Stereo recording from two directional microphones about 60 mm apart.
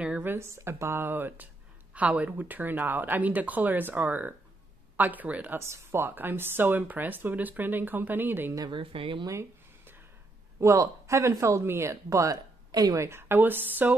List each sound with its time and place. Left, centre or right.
0.2 s speech: right
0.5 s speech: right
5.7 s speech: right
10.6 s speech: right
13.0 s a woman's voice: right
13.4 s speech: right